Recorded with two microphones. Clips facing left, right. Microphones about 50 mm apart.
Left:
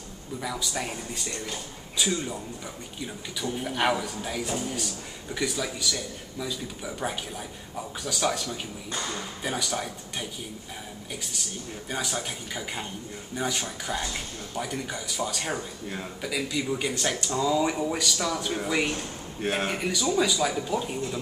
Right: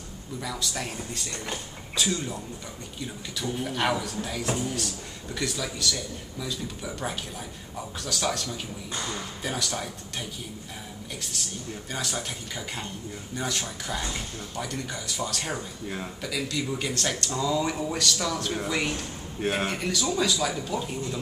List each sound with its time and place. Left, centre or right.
0.4 s speech: centre
3.4 s speech: centre
11.9 s speech: centre